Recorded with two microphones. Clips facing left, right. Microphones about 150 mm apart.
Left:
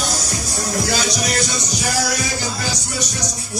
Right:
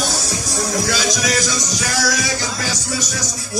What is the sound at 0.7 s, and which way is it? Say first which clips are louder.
Speech: even; 90° right.